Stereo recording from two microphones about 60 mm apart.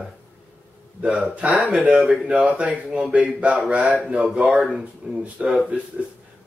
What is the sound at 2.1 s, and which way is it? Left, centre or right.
Speech, right.